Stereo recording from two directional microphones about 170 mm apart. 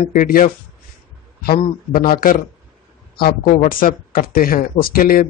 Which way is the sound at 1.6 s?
55° left (ahead or behind).